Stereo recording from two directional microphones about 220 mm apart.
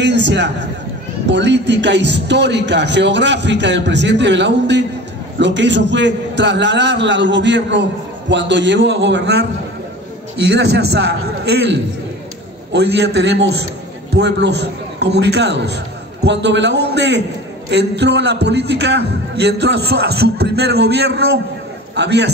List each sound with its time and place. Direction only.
0.0 s a man's voice: 55° right (ahead or behind)
10.5 s a man's voice: 50° right (ahead or behind)